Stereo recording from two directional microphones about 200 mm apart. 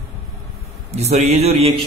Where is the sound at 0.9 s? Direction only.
35° right (ahead or behind).